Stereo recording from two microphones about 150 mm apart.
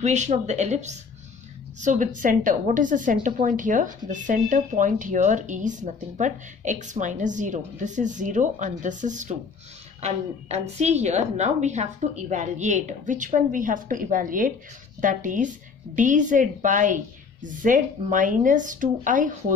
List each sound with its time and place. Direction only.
0.0 s speech: 50° right (ahead or behind)